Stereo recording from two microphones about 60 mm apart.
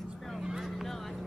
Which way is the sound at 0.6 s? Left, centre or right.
Centre.